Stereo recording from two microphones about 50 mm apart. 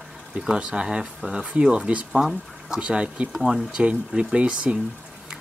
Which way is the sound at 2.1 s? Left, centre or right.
Centre.